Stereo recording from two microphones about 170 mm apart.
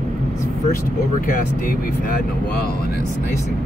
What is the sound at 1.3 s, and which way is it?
Speech, 60° left (ahead or behind).